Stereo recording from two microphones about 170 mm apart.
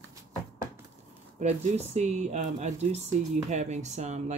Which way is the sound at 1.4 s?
40° right (ahead or behind).